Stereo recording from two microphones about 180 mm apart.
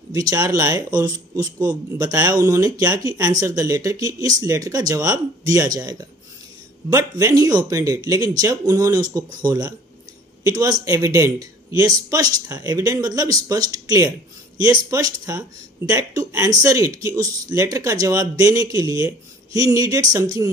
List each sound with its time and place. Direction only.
0.1 s speech: 20° right (ahead or behind)